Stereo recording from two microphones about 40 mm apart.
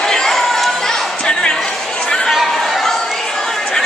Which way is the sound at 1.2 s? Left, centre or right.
Centre.